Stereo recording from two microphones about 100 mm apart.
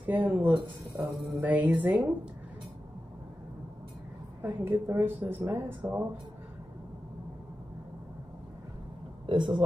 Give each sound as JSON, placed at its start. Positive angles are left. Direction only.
{"t": 0.0, "sound": "speech", "side_deg": -15}
{"t": 4.4, "sound": "speech", "side_deg": -20}
{"t": 9.2, "sound": "a man's voice", "side_deg": -55}